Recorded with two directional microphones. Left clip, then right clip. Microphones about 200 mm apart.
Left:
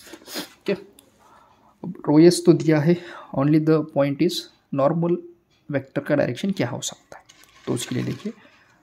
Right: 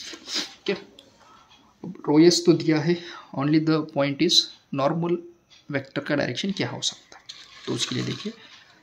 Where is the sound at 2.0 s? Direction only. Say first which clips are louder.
Left 2 dB; 40° left (ahead or behind).